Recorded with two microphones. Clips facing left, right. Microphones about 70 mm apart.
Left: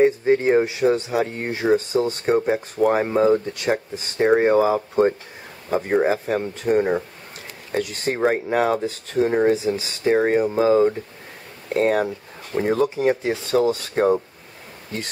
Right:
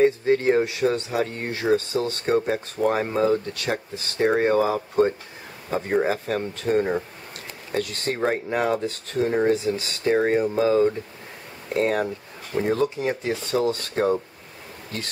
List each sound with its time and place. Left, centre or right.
0.0 s speech: centre